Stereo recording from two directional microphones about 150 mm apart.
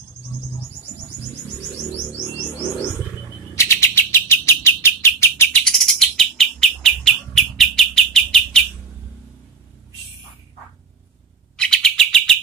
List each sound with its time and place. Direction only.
3.5 s bird: 20° left (ahead or behind)
5.6 s bird: 5° left (ahead or behind)
11.5 s bird: 5° left (ahead or behind)